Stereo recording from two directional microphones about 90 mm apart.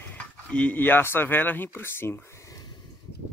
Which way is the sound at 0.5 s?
15° left (ahead or behind).